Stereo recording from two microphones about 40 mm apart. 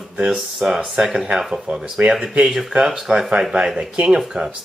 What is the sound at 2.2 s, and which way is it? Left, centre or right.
Speech, right.